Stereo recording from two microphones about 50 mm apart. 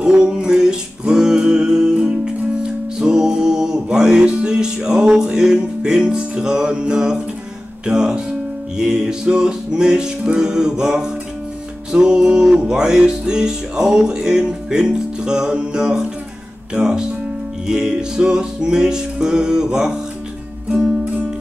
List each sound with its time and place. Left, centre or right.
0.0 s music: centre